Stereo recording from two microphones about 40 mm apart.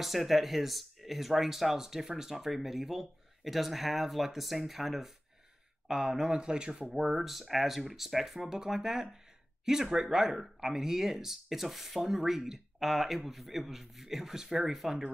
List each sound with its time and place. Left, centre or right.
0.0 s speech: centre; by 6.9 s right
6.9 s speech: centre